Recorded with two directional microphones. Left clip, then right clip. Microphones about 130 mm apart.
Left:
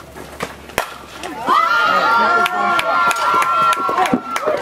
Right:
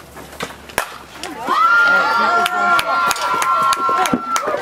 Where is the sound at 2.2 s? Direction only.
30° right (ahead or behind).